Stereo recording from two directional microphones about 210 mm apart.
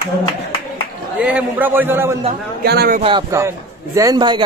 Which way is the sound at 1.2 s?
5° right (ahead or behind).